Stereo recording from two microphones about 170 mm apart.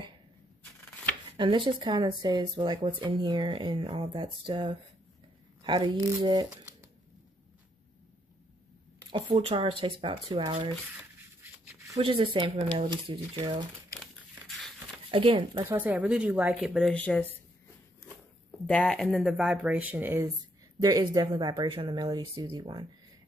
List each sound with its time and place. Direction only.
1.3 s speech: 30° right (ahead or behind)
9.1 s speech: 30° right (ahead or behind)
12.0 s speech: 30° right (ahead or behind)
15.0 s speech: 30° right (ahead or behind)
15.6 s speech: 10° right (ahead or behind)
16.7 s speech: 5° left (ahead or behind)
18.7 s speech: 5° left (ahead or behind); by 20.2 s 10° right (ahead or behind)
20.8 s speech: 20° right (ahead or behind)